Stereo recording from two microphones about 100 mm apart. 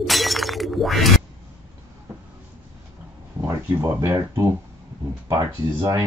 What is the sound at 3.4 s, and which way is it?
Speech, 30° right (ahead or behind).